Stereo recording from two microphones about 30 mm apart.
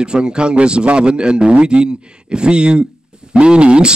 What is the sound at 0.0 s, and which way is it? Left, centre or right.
Speech, right.